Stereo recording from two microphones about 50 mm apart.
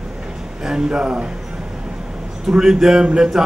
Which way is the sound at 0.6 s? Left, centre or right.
Centre.